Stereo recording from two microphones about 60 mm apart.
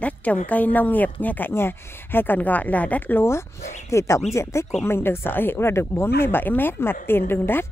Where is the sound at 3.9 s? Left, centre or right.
Left.